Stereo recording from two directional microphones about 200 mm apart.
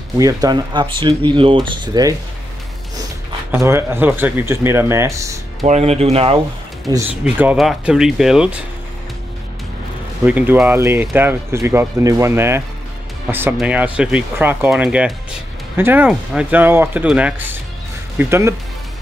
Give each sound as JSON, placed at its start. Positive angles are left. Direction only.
{"t": 0.2, "sound": "speech", "side_deg": -15}
{"t": 3.5, "sound": "speech", "side_deg": -15}
{"t": 5.7, "sound": "speech", "side_deg": -30}
{"t": 7.2, "sound": "speech", "side_deg": -5}
{"t": 10.2, "sound": "speech", "side_deg": -10}